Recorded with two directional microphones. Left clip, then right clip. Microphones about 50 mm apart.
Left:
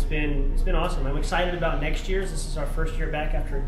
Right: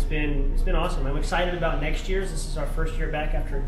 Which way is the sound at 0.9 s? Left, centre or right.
Centre.